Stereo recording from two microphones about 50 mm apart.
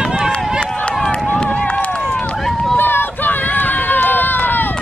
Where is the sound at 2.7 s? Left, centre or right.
Left.